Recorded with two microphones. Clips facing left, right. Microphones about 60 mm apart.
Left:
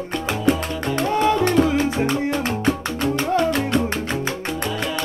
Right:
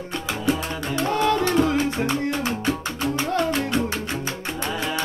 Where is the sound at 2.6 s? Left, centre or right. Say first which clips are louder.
Left 3 dB; left.